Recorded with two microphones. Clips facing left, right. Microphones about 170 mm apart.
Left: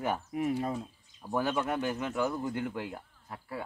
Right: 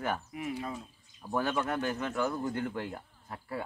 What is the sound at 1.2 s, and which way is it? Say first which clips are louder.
A man's voice: left 1 dB; 10° left (ahead or behind).